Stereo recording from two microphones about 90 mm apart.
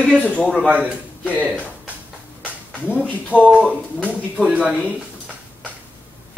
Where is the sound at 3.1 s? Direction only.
15° left (ahead or behind).